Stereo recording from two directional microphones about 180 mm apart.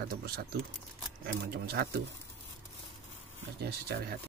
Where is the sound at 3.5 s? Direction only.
65° right (ahead or behind).